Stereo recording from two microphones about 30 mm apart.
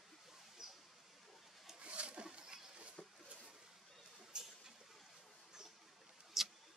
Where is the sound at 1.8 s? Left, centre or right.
Right.